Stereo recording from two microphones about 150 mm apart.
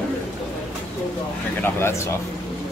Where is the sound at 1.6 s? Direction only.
15° left (ahead or behind).